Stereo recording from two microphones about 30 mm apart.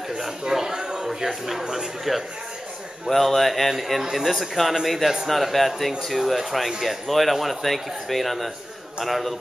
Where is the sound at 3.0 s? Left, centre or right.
Centre.